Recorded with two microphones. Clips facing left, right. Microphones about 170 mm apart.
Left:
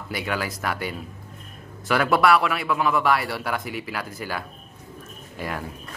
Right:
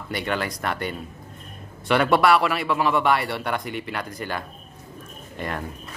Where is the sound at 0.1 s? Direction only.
5° left (ahead or behind).